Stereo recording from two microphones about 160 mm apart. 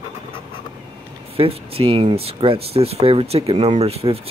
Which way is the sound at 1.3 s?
35° right (ahead or behind).